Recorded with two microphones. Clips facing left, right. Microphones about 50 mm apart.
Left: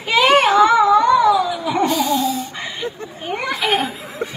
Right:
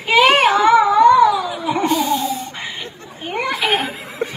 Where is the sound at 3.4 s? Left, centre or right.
Centre.